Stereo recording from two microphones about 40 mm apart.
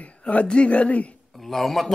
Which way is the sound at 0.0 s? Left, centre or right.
Left.